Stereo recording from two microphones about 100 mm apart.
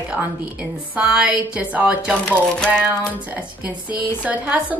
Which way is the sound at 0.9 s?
10° right (ahead or behind).